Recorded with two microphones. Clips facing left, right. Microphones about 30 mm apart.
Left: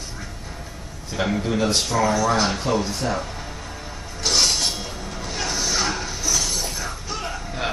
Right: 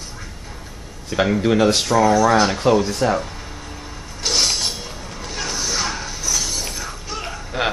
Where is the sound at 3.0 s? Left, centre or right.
Right.